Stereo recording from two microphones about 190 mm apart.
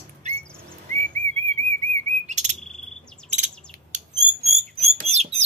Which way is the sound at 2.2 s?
40° right (ahead or behind).